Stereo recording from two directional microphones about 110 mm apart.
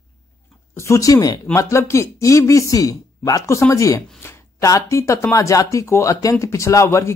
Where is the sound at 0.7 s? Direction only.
25° left (ahead or behind).